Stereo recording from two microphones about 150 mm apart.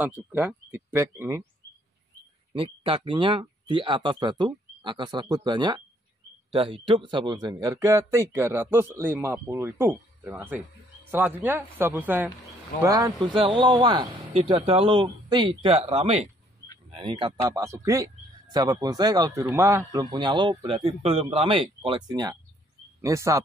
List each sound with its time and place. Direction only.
0.0 s speech: 10° right (ahead or behind)
2.5 s speech: 40° right (ahead or behind); by 12.3 s 15° right (ahead or behind)
12.8 s speech: 25° right (ahead or behind)
17.4 s a man's voice: 20° right (ahead or behind)